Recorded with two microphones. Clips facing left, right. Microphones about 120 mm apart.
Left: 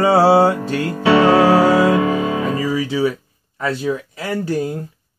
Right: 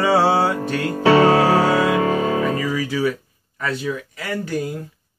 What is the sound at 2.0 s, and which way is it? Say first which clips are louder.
Music: left 1 dB; 35° right (ahead or behind).